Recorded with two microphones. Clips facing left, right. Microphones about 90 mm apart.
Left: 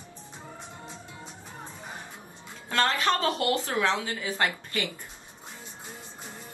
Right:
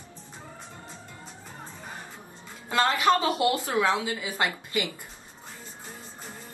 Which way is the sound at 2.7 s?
15° right (ahead or behind).